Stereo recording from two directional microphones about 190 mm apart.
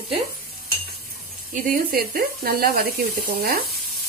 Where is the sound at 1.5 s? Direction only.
50° right (ahead or behind).